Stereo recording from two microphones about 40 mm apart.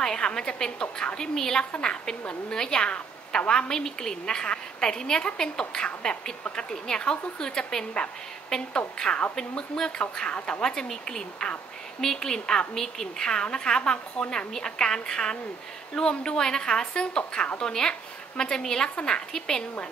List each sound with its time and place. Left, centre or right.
0.0 s a woman's voice: centre
10.6 s a woman's voice: centre